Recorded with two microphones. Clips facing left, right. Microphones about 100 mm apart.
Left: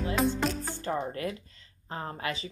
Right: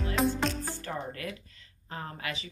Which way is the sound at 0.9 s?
30° left (ahead or behind).